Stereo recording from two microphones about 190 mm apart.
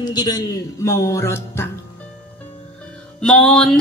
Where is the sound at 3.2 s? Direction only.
5° left (ahead or behind).